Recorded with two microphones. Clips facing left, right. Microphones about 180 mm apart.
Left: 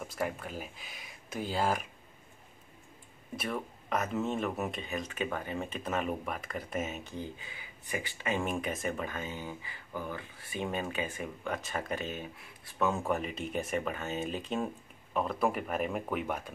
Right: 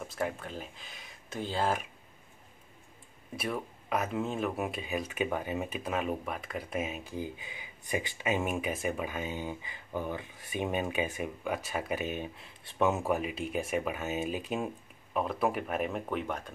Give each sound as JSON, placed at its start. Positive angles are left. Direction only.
{"t": 0.0, "sound": "speech", "side_deg": 0}
{"t": 3.3, "sound": "speech", "side_deg": -5}
{"t": 13.0, "sound": "speech", "side_deg": -5}